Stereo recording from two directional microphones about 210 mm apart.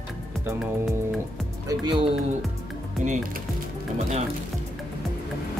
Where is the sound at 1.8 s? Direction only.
25° right (ahead or behind).